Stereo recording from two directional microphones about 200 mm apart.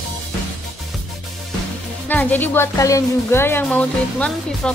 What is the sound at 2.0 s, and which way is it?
Speech, 10° left (ahead or behind).